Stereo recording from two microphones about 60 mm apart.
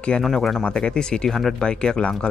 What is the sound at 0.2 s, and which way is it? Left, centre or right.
Speech, centre.